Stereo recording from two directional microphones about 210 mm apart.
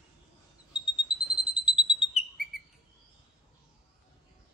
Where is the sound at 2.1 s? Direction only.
Centre (ahead or behind).